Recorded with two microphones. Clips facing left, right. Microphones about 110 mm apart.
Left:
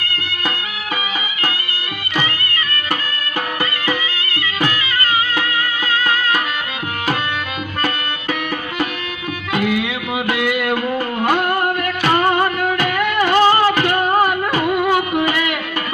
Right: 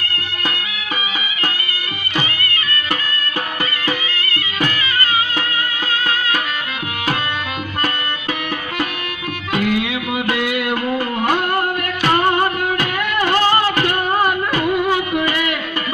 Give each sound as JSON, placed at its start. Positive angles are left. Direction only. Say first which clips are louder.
{"t": 13.2, "sound": "music", "louder": "left 3 dB", "side_deg": 20}